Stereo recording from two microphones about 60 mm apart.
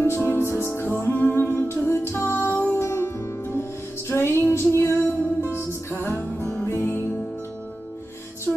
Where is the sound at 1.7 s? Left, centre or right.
Left.